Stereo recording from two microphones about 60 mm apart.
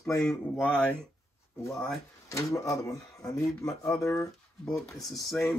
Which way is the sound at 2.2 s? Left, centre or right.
Left.